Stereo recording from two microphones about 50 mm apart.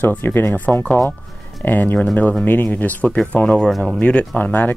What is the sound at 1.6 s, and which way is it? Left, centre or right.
Speech, left.